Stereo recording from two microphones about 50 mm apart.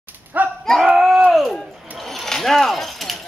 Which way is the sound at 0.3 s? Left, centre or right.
Right.